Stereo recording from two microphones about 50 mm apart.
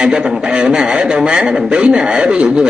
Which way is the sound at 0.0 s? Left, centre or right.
Centre.